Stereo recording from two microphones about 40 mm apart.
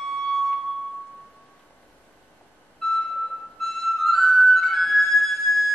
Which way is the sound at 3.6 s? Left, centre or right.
Centre.